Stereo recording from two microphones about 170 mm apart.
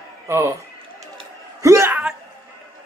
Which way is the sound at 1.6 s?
15° right (ahead or behind).